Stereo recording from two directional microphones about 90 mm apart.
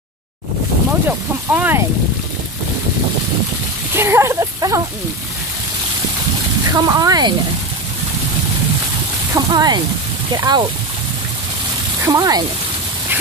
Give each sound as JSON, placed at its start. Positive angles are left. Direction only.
{"t": 1.0, "sound": "speech", "side_deg": -20}
{"t": 3.9, "sound": "speech", "side_deg": -25}
{"t": 6.7, "sound": "speech", "side_deg": -40}
{"t": 9.5, "sound": "speech", "side_deg": -50}
{"t": 12.1, "sound": "speech", "side_deg": -45}